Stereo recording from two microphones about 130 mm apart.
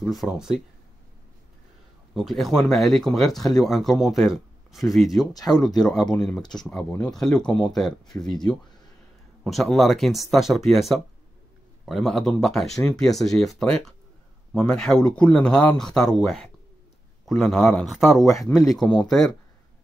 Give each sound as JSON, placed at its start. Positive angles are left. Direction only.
{"t": 0.0, "sound": "speech", "side_deg": 0}
{"t": 2.1, "sound": "speech", "side_deg": 0}
{"t": 9.4, "sound": "speech", "side_deg": 0}